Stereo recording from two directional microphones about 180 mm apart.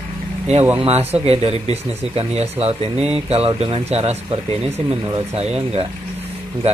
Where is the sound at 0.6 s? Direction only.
10° right (ahead or behind).